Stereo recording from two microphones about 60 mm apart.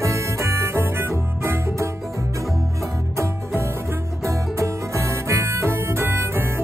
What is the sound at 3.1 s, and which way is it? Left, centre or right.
Music, right.